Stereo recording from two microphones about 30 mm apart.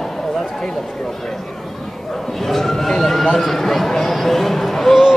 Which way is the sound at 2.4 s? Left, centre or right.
Centre.